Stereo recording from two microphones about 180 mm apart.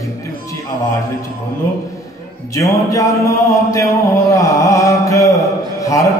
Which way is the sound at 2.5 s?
20° left (ahead or behind).